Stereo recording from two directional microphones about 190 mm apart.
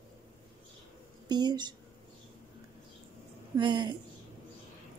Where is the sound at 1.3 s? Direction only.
20° right (ahead or behind).